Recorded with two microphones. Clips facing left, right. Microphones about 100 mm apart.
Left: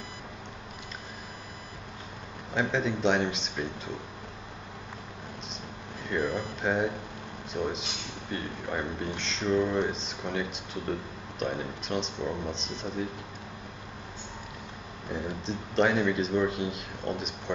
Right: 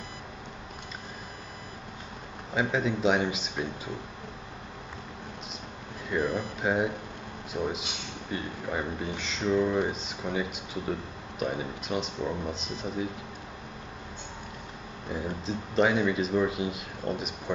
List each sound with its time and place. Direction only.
2.5 s speech: 5° right (ahead or behind)
6.0 s speech: 5° right (ahead or behind)
15.0 s speech: centre (ahead or behind)